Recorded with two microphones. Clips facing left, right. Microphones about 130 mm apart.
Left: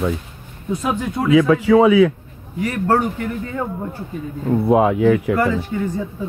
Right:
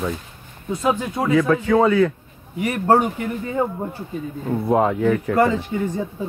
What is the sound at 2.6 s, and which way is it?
Speech, 20° right (ahead or behind).